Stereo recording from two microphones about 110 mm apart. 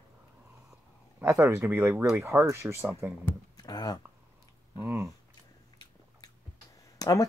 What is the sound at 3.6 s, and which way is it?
Speech, 40° left (ahead or behind).